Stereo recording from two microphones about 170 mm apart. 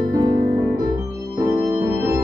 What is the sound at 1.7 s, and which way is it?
Organ, 15° right (ahead or behind).